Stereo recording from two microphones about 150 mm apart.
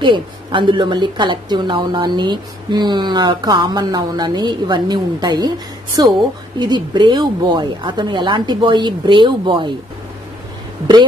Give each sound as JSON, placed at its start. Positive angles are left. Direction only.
{"t": 0.0, "sound": "a woman's voice", "side_deg": -35}